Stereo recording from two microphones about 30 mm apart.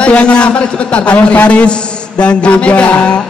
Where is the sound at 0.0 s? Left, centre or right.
Left.